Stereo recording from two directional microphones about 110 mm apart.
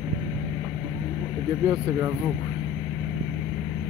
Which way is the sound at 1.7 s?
20° right (ahead or behind).